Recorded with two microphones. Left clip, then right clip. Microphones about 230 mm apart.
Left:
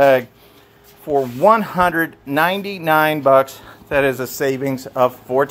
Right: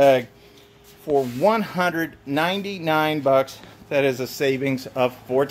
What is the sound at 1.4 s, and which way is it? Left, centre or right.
Speech, centre.